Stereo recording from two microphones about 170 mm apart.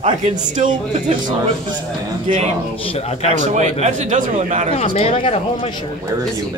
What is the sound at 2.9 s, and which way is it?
Speech, 40° left (ahead or behind).